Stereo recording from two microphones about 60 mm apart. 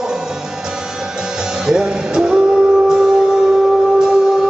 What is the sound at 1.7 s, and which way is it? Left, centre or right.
Music, centre.